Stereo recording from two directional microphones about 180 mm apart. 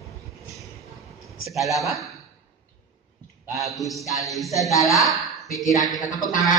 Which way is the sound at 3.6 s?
Centre (ahead or behind).